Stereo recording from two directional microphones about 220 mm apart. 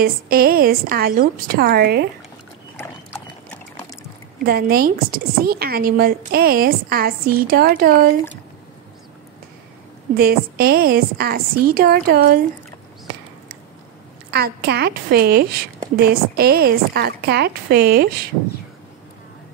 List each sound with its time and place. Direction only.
0.0 s speech: 40° right (ahead or behind)
2.8 s clip-clop: 10° left (ahead or behind)
4.5 s speech: 45° right (ahead or behind)
10.1 s speech: 45° right (ahead or behind)
14.3 s speech: 45° right (ahead or behind)